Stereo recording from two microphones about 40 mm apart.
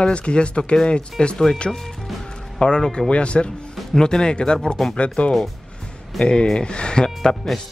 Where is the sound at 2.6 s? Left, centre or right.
Left.